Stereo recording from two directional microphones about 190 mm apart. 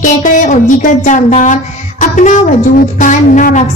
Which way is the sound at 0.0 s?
45° left (ahead or behind).